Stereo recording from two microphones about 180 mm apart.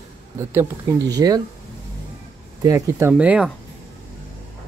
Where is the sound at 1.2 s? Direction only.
15° right (ahead or behind).